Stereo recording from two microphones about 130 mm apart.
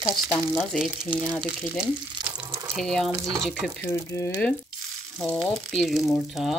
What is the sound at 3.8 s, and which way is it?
Speech, 20° left (ahead or behind).